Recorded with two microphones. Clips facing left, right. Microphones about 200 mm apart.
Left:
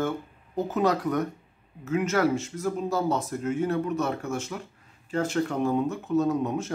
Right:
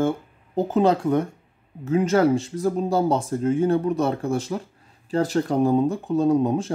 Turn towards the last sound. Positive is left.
turn(degrees=-30)  # may be behind; listen again after turning